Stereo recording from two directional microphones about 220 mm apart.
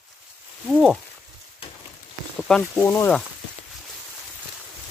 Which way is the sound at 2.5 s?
10° left (ahead or behind).